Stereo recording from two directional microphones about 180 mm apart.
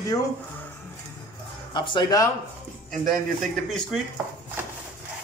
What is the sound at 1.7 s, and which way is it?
Speech, 25° left (ahead or behind).